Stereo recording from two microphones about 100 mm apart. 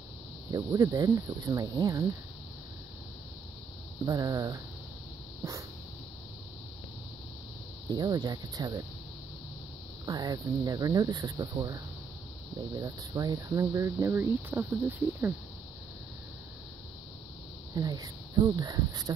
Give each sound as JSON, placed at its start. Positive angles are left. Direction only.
{"t": 0.5, "sound": "speech", "side_deg": -40}
{"t": 4.0, "sound": "speech", "side_deg": -40}
{"t": 7.9, "sound": "speech", "side_deg": -40}
{"t": 10.0, "sound": "speech", "side_deg": -40}
{"t": 12.7, "sound": "speech", "side_deg": -40}
{"t": 17.7, "sound": "speech", "side_deg": -40}